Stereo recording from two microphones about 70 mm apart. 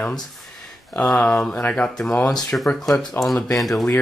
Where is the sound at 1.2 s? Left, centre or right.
Centre.